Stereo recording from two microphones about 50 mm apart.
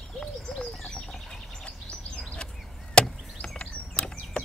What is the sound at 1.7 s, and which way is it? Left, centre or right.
Bird, centre.